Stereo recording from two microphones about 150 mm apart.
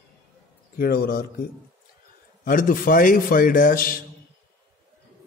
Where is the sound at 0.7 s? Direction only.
85° left.